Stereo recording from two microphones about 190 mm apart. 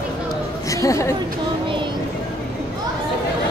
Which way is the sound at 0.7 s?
15° left (ahead or behind).